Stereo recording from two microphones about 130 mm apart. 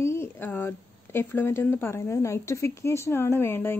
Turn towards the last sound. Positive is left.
turn(degrees=15)  # may be behind; listen again after turning